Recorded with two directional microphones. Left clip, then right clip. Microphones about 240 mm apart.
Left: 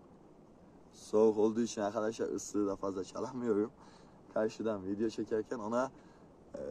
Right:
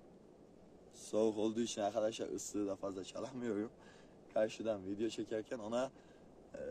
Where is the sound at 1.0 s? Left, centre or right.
Centre.